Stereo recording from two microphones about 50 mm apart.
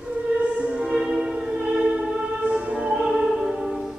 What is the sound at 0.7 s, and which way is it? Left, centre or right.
Music, centre.